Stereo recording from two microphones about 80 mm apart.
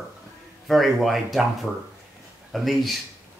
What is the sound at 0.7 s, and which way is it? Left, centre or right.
Speech, centre.